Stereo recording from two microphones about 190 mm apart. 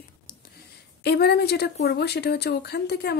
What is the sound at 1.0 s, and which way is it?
Speech, 60° left (ahead or behind).